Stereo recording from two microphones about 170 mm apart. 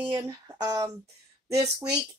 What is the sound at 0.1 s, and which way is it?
Speech, 20° right (ahead or behind).